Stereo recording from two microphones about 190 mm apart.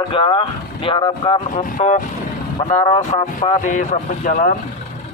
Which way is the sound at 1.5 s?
45° left (ahead or behind).